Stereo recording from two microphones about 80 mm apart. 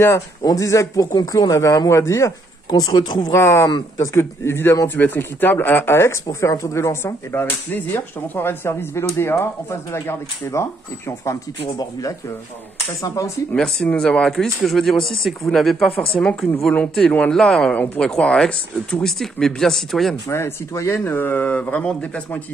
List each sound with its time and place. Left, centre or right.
0.0 s speech: left
1.1 s speech: left
2.7 s speech: left
3.3 s a man's voice: left
13.0 s speech: left
13.5 s speech: centre
20.2 s speech: left
21.0 s a man's voice: left